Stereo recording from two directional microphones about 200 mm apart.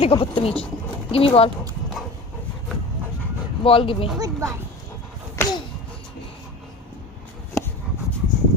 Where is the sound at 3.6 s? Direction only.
25° left (ahead or behind).